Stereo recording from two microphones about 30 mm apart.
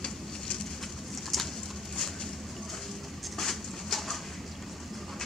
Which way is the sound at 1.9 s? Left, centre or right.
Centre.